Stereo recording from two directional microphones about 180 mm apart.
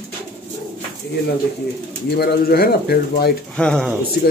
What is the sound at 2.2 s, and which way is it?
Speech, 60° left (ahead or behind).